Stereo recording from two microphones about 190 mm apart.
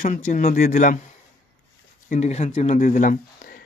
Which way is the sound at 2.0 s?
35° left (ahead or behind).